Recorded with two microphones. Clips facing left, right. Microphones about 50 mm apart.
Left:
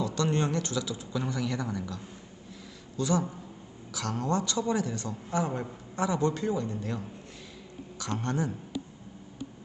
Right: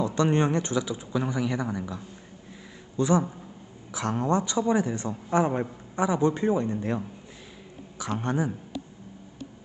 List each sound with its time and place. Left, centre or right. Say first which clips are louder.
0.0 s a man's voice: right 5 dB; right
3.0 s a man's voice: right 5 dB; right
8.0 s a man's voice: right 3 dB; centre